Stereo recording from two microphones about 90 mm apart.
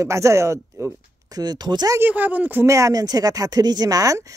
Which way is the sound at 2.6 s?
40° right (ahead or behind).